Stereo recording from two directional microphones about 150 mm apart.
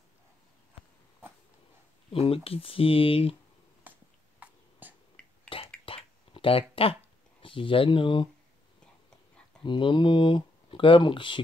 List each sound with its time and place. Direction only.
2.1 s speech: 40° left (ahead or behind)
3.9 s a sound: 10° right (ahead or behind)
5.2 s a sound: 5° left (ahead or behind)
5.9 s clicking: 35° left (ahead or behind)
6.7 s speech: 40° left (ahead or behind)
9.6 s speech: 30° left (ahead or behind)